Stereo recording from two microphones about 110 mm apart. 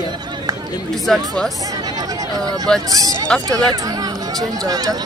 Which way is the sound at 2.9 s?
35° right (ahead or behind).